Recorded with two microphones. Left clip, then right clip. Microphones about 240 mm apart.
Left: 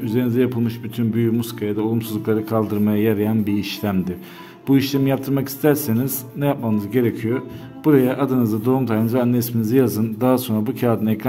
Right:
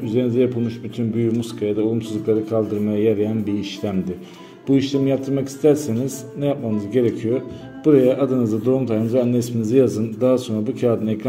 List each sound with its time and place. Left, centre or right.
0.0 s speech: left